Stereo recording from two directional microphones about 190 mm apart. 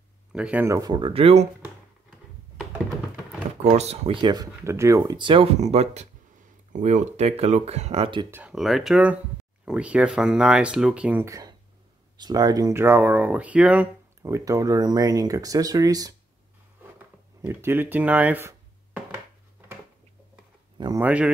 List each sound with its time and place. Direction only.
0.3 s speech: 5° right (ahead or behind); by 1.5 s 30° right (ahead or behind)
3.7 s speech: 35° right (ahead or behind)
8.3 s speech: 5° right (ahead or behind)
17.4 s speech: 15° right (ahead or behind)
20.7 s a sound: 20° right (ahead or behind)
21.0 s speech: 5° right (ahead or behind)